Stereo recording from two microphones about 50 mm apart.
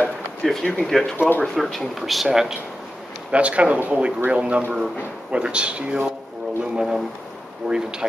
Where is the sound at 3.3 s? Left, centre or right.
Right.